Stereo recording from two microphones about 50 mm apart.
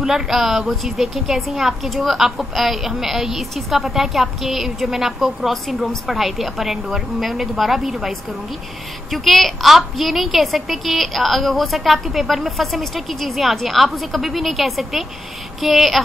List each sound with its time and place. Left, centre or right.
0.0 s a woman's voice: centre